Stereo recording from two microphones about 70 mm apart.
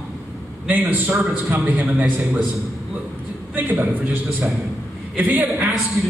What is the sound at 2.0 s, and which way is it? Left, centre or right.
Speech, centre.